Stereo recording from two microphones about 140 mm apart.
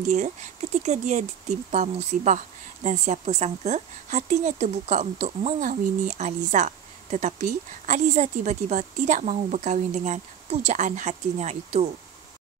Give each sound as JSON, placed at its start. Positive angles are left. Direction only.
{"t": 0.0, "sound": "speech", "side_deg": -55}
{"t": 5.6, "sound": "speech", "side_deg": -65}